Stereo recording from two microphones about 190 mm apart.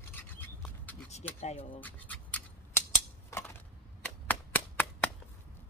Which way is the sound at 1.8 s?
10° left (ahead or behind).